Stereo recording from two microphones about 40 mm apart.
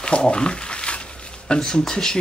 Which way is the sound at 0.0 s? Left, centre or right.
Left.